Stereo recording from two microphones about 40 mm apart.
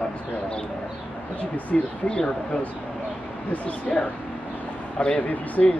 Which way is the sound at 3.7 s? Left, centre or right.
Left.